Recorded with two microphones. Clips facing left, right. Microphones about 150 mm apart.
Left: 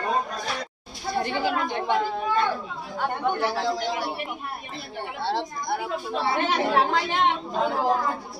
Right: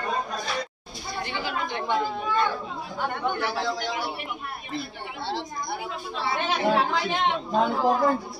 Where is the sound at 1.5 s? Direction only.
45° left (ahead or behind).